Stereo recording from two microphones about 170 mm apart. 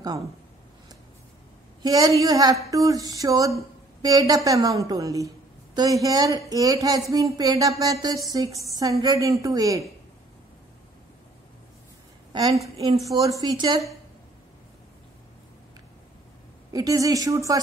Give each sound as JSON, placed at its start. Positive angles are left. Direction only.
{"t": 1.8, "sound": "speech", "side_deg": -20}
{"t": 12.3, "sound": "a woman's voice", "side_deg": -25}
{"t": 16.7, "sound": "speech", "side_deg": -20}